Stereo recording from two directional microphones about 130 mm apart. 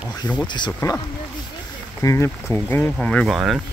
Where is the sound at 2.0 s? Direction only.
20° left (ahead or behind).